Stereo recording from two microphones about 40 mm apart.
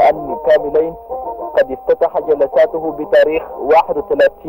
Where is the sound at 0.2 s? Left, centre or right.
Centre.